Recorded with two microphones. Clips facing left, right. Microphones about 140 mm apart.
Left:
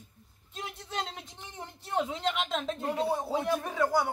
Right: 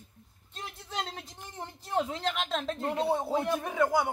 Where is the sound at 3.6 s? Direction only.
15° right (ahead or behind).